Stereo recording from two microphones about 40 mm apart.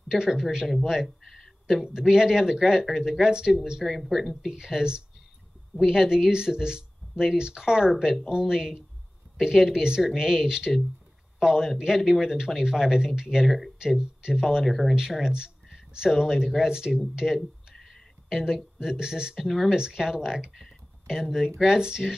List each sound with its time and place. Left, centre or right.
0.1 s speech: centre
1.2 s a sound: centre
1.9 s speech: centre
3.8 s speech: centre
4.5 s speech: centre
13.5 s speech: centre
13.7 s speech: centre
14.7 s speech: centre
15.2 s speech: centre
17.4 s a sound: centre
18.3 s speech: centre
19.3 s speech: centre
19.7 s speech: centre